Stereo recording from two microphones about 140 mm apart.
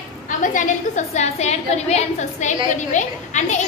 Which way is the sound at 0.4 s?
65° left (ahead or behind).